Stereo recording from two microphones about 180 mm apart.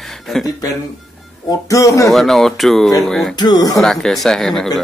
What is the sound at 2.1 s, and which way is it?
Speech, centre (ahead or behind).